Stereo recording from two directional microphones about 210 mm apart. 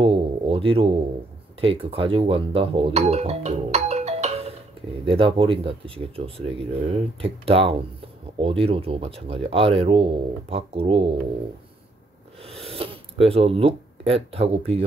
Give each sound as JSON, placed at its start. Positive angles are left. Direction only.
{"t": 0.0, "sound": "a sound", "side_deg": -25}
{"t": 1.6, "sound": "speech", "side_deg": -25}
{"t": 12.4, "sound": "speech", "side_deg": -25}